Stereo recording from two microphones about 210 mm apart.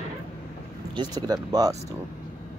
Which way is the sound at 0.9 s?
20° right (ahead or behind).